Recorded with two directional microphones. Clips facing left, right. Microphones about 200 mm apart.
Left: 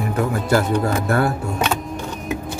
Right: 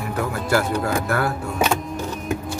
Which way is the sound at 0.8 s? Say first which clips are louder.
Left 3 dB; 25° left (ahead or behind).